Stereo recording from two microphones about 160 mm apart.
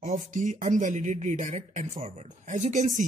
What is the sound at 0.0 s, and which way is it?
Speech, 50° right (ahead or behind).